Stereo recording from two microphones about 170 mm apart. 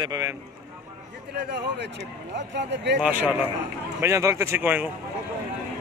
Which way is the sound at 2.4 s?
90° right.